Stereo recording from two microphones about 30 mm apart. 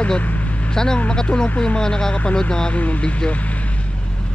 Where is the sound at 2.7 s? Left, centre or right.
Left.